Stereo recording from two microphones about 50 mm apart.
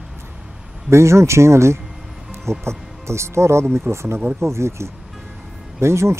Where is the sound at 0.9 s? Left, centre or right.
Right.